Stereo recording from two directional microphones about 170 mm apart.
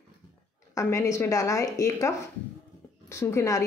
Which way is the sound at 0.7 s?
20° left (ahead or behind).